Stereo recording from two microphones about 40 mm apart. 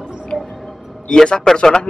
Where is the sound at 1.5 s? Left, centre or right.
Left.